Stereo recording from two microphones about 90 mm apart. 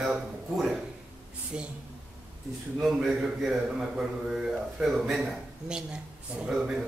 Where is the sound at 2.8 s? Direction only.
5° right (ahead or behind).